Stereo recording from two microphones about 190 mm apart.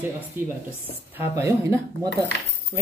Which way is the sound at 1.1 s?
15° right (ahead or behind).